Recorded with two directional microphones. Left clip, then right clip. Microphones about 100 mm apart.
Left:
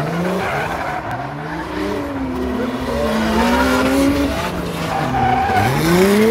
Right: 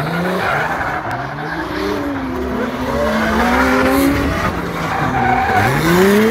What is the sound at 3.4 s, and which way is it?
Vehicle, 75° left (ahead or behind).